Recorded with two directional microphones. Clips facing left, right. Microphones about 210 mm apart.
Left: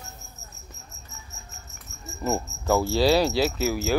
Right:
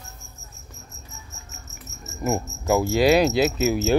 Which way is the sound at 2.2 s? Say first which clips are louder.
Right 2 dB; 15° right (ahead or behind).